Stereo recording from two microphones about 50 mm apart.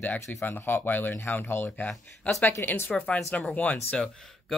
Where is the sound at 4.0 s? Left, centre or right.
Centre.